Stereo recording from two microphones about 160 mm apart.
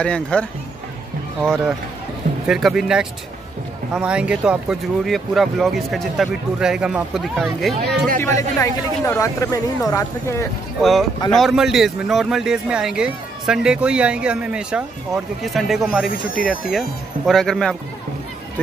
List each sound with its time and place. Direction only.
0.0 s speech: 5° left (ahead or behind)
2.4 s a man's voice: centre (ahead or behind)
8.2 s speech: 20° left (ahead or behind)
10.8 s a man's voice: centre (ahead or behind)
17.3 s a man's voice: 5° left (ahead or behind)